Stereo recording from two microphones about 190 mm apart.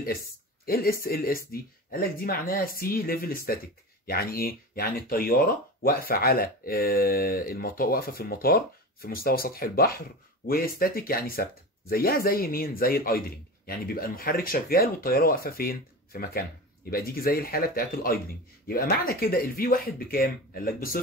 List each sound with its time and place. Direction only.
0.7 s speech: 50° left (ahead or behind)